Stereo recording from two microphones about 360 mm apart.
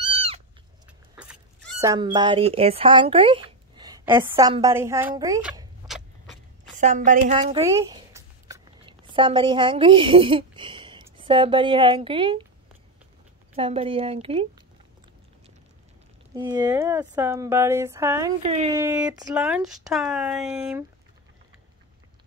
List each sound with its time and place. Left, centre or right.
0.0 s cat: centre
1.8 s speech: centre
6.8 s speech: centre
13.6 s speech: centre
16.3 s speech: centre